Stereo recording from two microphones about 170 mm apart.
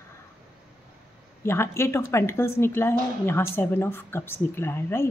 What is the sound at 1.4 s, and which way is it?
A woman's voice, 15° left (ahead or behind).